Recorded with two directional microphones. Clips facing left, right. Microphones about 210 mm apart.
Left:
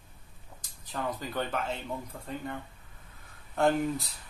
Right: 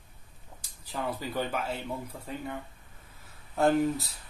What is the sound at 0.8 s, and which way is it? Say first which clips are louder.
Speech: right 1 dB; 10° right (ahead or behind).